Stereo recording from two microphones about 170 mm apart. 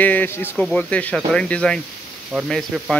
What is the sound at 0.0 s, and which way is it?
Speech, 10° left (ahead or behind).